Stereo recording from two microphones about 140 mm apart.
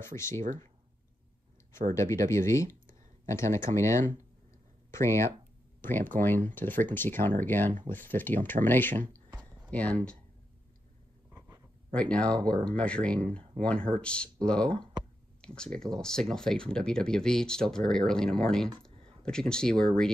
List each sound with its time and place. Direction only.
0.0 s speech: 20° left (ahead or behind)
2.0 s speech: 20° left (ahead or behind)
5.8 s a sound: 15° left (ahead or behind)
6.1 s speech: 15° left (ahead or behind)
11.3 s a sound: 20° right (ahead or behind)
11.9 s speech: 10° left (ahead or behind)